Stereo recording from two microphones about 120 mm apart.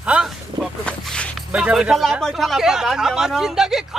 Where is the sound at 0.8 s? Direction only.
10° left (ahead or behind).